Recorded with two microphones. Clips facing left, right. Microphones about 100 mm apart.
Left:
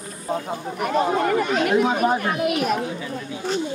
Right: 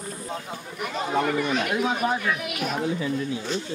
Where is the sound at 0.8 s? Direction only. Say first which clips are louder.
Left 5 dB; 50° left (ahead or behind).